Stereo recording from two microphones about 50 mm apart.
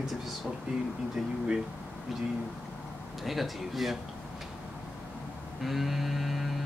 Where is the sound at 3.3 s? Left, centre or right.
Centre.